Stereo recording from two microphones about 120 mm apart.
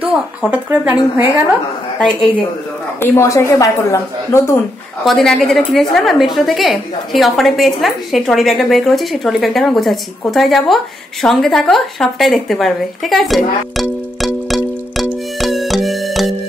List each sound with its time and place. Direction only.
0.0 s speech: 10° right (ahead or behind)
3.0 s speech: 25° left (ahead or behind)
5.0 s speech: centre (ahead or behind)
15.4 s music: centre (ahead or behind)